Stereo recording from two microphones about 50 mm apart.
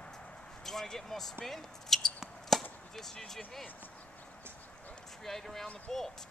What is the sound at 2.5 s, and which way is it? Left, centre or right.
Chop, centre.